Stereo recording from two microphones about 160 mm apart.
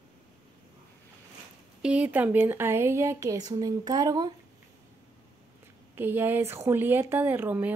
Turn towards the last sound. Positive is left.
turn(degrees=-10)  # may be behind; listen again after turning